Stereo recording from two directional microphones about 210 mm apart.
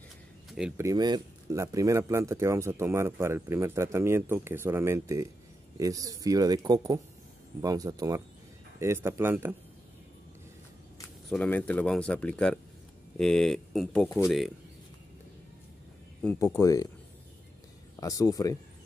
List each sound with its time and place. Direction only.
0.5 s speech: 5° right (ahead or behind)
0.8 s speech: 20° right (ahead or behind)
11.2 s speech: 5° left (ahead or behind)
16.2 s speech: 10° left (ahead or behind)
18.0 s speech: 15° left (ahead or behind)